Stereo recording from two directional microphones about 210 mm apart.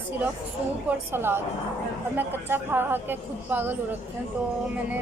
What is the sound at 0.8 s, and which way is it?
A woman's voice, 10° right (ahead or behind).